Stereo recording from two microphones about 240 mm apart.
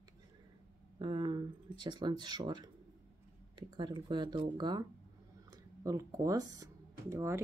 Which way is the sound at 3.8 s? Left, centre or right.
Centre.